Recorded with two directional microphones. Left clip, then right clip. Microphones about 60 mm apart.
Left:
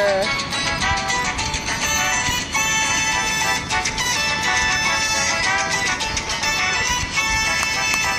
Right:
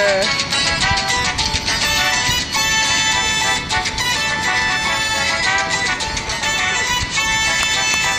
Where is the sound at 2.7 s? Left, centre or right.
Centre.